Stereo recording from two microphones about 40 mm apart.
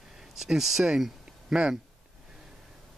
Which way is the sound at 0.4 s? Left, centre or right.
Centre.